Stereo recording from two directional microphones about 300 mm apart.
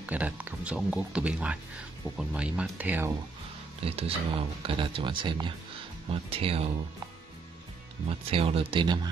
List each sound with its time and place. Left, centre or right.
0.0 s speech: centre
3.8 s speech: centre
8.1 s speech: centre